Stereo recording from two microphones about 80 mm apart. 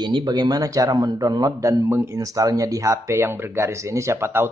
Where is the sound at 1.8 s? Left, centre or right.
Right.